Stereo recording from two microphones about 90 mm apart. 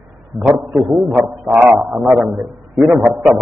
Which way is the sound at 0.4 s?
15° right (ahead or behind).